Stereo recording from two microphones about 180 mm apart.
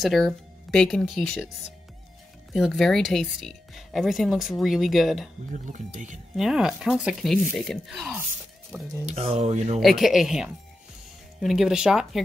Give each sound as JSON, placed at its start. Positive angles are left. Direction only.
{"t": 0.0, "sound": "speech", "side_deg": 0}
{"t": 2.5, "sound": "speech", "side_deg": 0}
{"t": 5.5, "sound": "speech", "side_deg": -45}
{"t": 6.3, "sound": "speech", "side_deg": 0}
{"t": 9.0, "sound": "speech", "side_deg": -35}
{"t": 9.8, "sound": "speech", "side_deg": 0}